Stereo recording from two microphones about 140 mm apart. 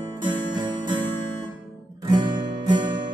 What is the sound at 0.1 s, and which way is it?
Music, 30° right (ahead or behind).